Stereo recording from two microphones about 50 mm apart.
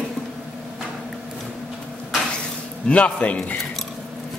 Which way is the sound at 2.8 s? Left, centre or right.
Left.